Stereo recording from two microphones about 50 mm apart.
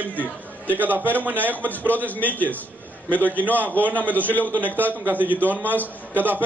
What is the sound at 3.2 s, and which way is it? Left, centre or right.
A man's voice, right.